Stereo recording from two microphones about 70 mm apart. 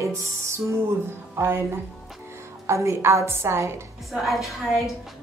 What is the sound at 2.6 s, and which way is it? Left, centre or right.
A woman's voice, right.